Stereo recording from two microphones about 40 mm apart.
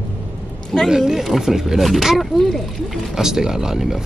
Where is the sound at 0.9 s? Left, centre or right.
Centre.